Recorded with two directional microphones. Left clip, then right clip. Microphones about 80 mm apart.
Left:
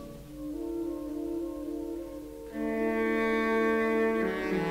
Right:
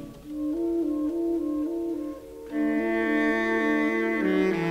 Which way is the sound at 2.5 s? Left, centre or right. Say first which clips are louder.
Right 5 dB; left.